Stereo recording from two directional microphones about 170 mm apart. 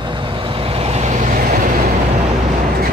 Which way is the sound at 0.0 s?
30° right (ahead or behind).